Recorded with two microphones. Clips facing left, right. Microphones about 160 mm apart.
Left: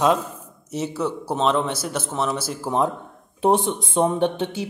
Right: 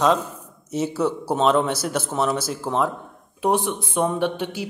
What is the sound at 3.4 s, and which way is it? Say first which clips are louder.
Speech: left 2 dB; 25° left (ahead or behind).